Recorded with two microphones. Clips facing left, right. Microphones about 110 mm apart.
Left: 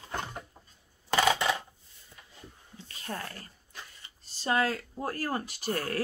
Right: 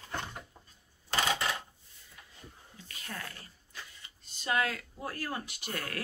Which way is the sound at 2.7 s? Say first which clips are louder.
Left 5 dB; 30° left (ahead or behind).